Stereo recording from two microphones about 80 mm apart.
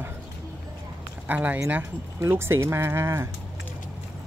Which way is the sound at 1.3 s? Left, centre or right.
Right.